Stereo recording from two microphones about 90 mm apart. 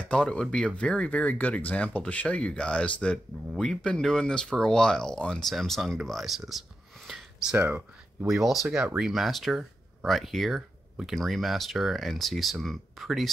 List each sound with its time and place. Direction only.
0.0 s speech: 10° left (ahead or behind)
7.5 s speech: 25° right (ahead or behind)
8.3 s speech: centre (ahead or behind)